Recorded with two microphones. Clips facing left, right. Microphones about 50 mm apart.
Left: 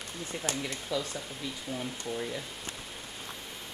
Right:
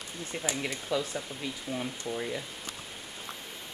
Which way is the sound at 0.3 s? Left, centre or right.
Centre.